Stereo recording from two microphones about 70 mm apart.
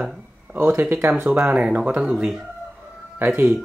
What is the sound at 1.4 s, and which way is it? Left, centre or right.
Speech, centre.